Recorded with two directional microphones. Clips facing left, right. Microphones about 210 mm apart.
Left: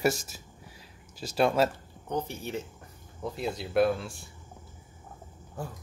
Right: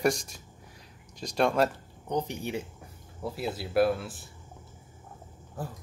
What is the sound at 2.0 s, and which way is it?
Speech, 15° right (ahead or behind).